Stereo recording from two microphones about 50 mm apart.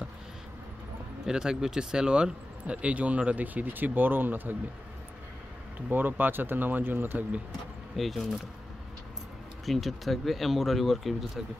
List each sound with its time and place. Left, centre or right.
1.2 s a man's voice: centre
2.6 s speech: right
5.8 s speech: right
7.9 s speech: centre
9.7 s speech: centre